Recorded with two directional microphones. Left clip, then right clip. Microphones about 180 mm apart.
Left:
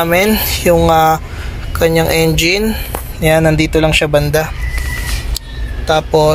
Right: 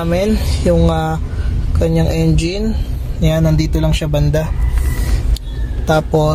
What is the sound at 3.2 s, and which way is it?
Speech, 20° left (ahead or behind).